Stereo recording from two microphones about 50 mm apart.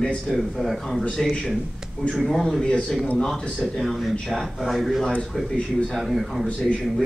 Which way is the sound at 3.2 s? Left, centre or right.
Centre.